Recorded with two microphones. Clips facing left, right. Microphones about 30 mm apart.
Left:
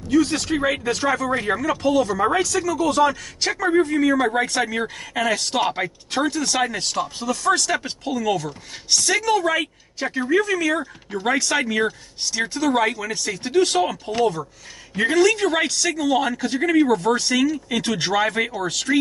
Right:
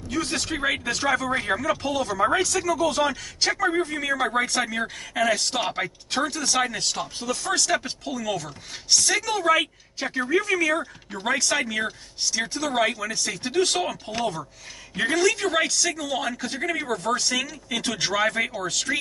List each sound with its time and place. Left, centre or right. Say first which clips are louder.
0.3 s a man's voice: left 5 dB; centre
0.7 s a man's voice: left 1 dB; centre
2.6 s speech: left 4 dB; centre
3.6 s a man's voice: left 10 dB; centre
11.2 s a man's voice: left 3 dB; centre
12.4 s a man's voice: left 4 dB; centre